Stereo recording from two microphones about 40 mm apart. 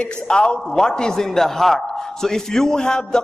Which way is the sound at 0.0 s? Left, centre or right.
Left.